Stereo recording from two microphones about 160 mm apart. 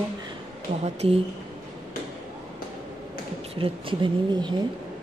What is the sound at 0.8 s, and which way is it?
Speech, 35° right (ahead or behind).